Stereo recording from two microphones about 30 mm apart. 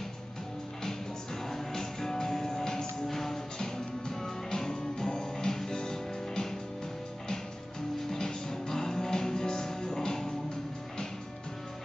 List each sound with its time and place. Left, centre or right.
1.5 s music: centre
8.1 s music: centre